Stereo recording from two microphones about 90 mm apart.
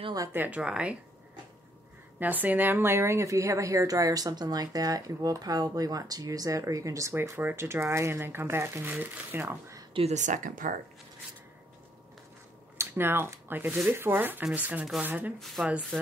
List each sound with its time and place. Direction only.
0.3 s speech: 20° right (ahead or behind)
2.1 s speech: 20° right (ahead or behind)
9.9 s a woman's voice: 80° right
12.7 s speech: 25° right (ahead or behind)
15.3 s speech: centre (ahead or behind)